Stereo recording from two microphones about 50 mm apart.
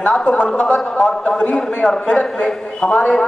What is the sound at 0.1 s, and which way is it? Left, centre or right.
A man's voice, centre.